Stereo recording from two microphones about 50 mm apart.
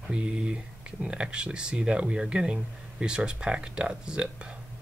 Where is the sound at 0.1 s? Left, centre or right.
Right.